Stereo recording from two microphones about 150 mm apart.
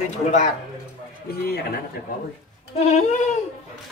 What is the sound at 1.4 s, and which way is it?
Speech, 90° left.